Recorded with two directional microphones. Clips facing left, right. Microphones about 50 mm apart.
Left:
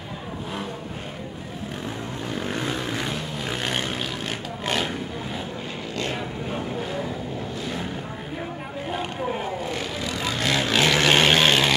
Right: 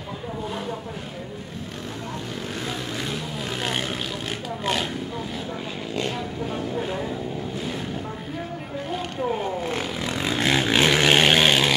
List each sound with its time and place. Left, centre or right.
2.6 s vehicle: centre
8.9 s a sound: centre
9.7 s vehicle: right; by 11.7 s centre